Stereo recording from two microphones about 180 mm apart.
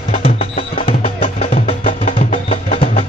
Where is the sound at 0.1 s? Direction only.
30° left (ahead or behind).